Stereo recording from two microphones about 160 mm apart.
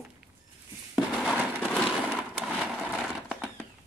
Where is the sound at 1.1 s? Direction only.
5° right (ahead or behind).